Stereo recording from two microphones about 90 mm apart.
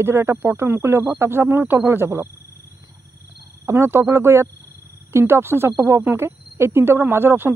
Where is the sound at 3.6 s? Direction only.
30° right (ahead or behind).